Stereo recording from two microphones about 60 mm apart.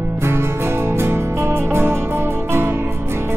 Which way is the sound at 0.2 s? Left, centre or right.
Right.